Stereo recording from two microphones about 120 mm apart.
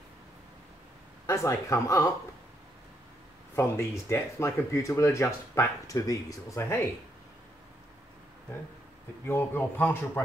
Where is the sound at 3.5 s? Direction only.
20° left (ahead or behind).